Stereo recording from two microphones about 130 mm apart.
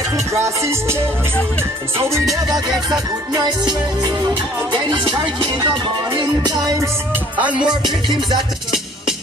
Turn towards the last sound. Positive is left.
turn(degrees=-10)  # may be behind; listen again after turning